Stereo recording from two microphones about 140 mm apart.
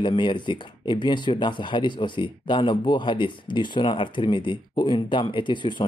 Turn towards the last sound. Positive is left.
turn(degrees=35)  # may be behind; listen again after turning